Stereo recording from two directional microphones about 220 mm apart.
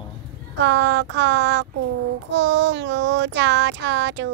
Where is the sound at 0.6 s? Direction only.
55° right (ahead or behind).